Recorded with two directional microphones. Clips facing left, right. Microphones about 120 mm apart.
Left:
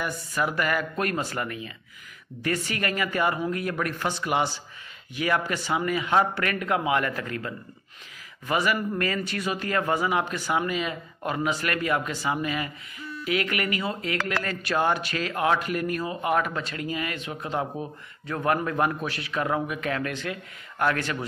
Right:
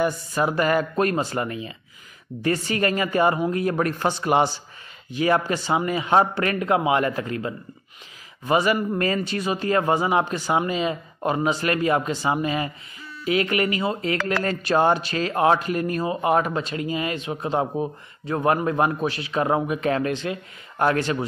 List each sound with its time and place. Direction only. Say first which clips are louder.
0.0 s speech: right 6 dB; 30° right (ahead or behind)